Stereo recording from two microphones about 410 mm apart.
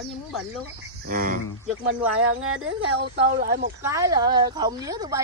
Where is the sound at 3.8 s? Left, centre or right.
Centre.